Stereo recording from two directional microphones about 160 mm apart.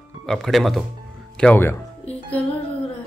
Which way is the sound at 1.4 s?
15° left (ahead or behind).